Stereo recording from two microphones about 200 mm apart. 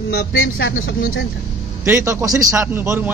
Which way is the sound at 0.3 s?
70° left (ahead or behind).